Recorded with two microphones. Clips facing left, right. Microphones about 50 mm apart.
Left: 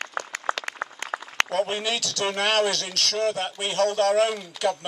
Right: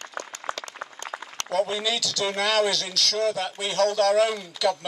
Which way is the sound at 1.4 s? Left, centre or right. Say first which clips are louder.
Right 6 dB; left.